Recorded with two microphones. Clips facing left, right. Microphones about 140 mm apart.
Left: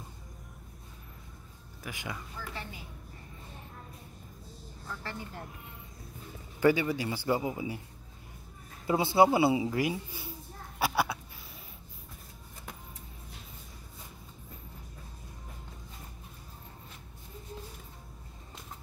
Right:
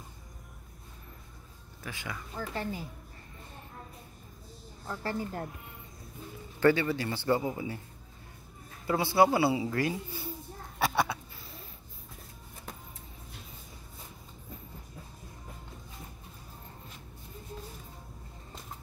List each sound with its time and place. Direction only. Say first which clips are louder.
1.8 s speech: even; 15° left (ahead or behind)
2.3 s a woman's voice: right 7 dB; 40° right (ahead or behind)
4.8 s a woman's voice: right 7 dB; 40° right (ahead or behind)
6.6 s speech: right 1 dB; 10° left (ahead or behind)
8.8 s speech: left 1 dB; 20° left (ahead or behind)
10.8 s a sound: right 1 dB; 5° left (ahead or behind)